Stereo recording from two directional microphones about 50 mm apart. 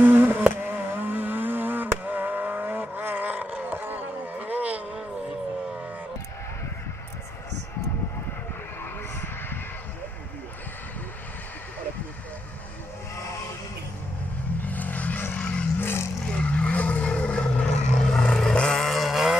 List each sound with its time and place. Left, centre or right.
0.0 s a sound: right
0.6 s vehicle: right
14.7 s vehicle: left
15.3 s a sound: left
15.8 s vehicle: left
16.3 s vehicle: left; by 19.3 s centre